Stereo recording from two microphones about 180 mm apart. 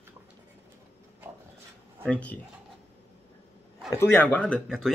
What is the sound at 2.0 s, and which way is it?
Speech, 10° left (ahead or behind).